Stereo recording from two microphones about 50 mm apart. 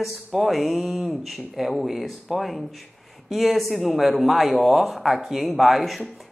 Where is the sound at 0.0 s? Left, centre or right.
Centre.